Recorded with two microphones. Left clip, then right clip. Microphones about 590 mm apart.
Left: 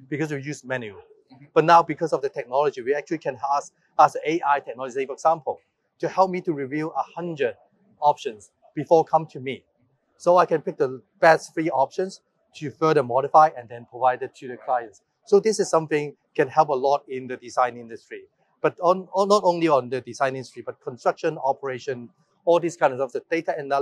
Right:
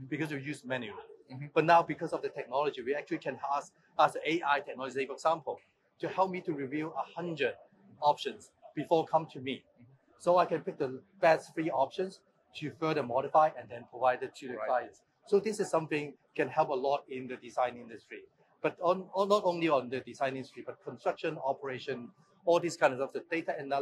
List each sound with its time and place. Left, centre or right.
0.1 s speech: left